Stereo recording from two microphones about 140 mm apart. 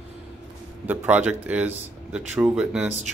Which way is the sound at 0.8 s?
10° right (ahead or behind).